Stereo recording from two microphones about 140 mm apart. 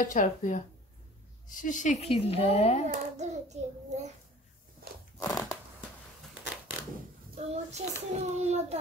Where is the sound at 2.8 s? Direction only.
55° right (ahead or behind).